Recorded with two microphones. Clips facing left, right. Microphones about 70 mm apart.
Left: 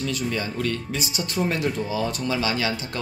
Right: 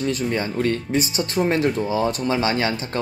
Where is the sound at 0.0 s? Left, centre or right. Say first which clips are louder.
Right 4 dB; right.